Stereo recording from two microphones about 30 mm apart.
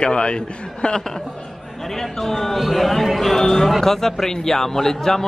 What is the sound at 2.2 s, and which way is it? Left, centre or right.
A man's voice, centre.